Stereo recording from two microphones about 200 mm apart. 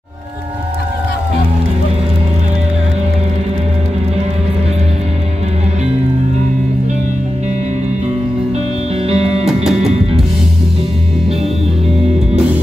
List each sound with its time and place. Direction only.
9.1 s music: 30° right (ahead or behind)
9.7 s music: 5° right (ahead or behind)